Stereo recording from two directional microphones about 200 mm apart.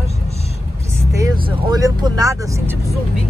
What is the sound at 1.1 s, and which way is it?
Speech, 15° right (ahead or behind).